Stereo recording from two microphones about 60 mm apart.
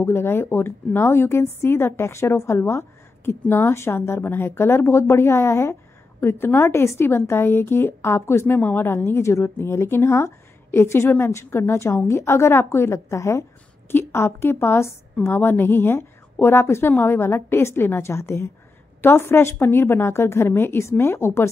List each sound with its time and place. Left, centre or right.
0.0 s a woman's voice: left
3.4 s a woman's voice: left
3.7 s a woman's voice: left